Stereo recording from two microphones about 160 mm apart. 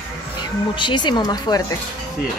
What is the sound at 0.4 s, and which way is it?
Speech, 30° left (ahead or behind).